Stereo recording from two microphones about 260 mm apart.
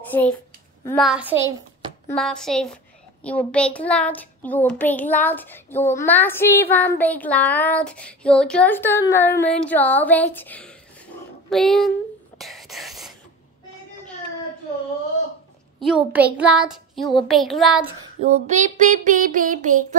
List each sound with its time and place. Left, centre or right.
0.1 s a child's voice: centre
2.0 s child singing: centre
3.3 s a child's voice: centre
11.5 s child singing: centre
12.4 s a sound: centre
15.8 s child singing: centre
18.2 s speech: right